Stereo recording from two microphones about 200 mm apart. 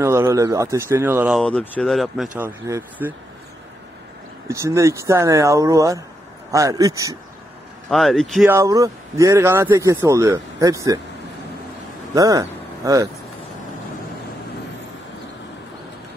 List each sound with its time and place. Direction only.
0.0 s speech: 15° right (ahead or behind)
1.4 s speech: 5° left (ahead or behind)
2.3 s speech: 10° right (ahead or behind)
4.5 s speech: 15° right (ahead or behind)
7.9 s speech: centre (ahead or behind)
8.5 s speech: 15° right (ahead or behind)
12.1 s speech: 15° right (ahead or behind)